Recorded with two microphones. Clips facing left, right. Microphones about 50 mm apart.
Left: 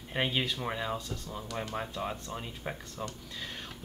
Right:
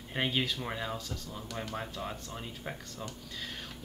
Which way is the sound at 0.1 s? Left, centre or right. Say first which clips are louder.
Left 1 dB; centre.